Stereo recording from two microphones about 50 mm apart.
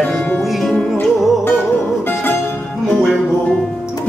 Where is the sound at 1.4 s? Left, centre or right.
Left.